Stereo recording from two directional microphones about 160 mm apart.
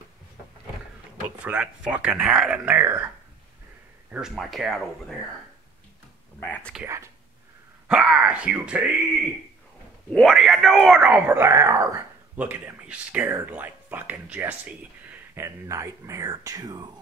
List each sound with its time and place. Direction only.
1.4 s speech: 10° right (ahead or behind)
4.1 s speech: centre (ahead or behind)
6.4 s speech: 5° left (ahead or behind)
7.9 s speech: 5° right (ahead or behind)
10.1 s speech: centre (ahead or behind); by 16.8 s 25° right (ahead or behind)